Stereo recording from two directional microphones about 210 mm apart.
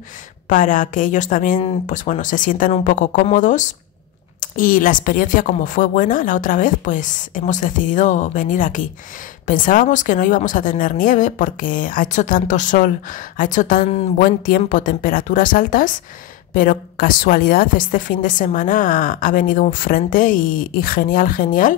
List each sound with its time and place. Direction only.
0.5 s a woman's voice: 40° left (ahead or behind)